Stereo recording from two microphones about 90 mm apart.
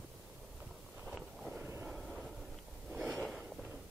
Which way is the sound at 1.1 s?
5° right (ahead or behind).